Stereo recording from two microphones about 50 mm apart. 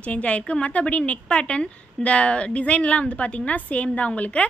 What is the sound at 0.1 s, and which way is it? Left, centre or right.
A woman's voice, left.